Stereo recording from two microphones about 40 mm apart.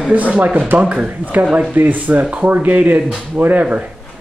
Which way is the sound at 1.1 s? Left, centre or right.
Right.